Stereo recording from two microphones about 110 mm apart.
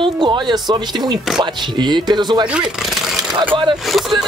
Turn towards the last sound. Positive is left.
turn(degrees=0)  # may be behind; listen again after turning